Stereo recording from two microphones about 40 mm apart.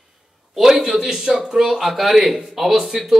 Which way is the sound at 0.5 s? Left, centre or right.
Centre.